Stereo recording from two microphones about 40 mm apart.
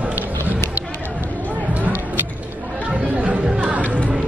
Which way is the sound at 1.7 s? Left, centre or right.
Right.